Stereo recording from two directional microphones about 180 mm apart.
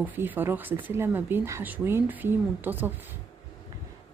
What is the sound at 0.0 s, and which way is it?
Speech, 10° right (ahead or behind).